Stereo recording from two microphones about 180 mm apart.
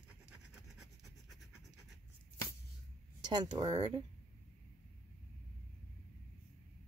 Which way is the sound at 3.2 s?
25° right (ahead or behind).